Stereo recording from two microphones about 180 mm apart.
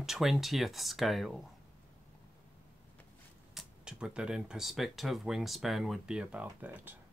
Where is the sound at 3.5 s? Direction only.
5° right (ahead or behind).